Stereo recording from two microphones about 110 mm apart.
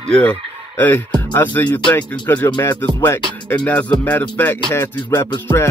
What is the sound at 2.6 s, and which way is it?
Music, 20° left (ahead or behind).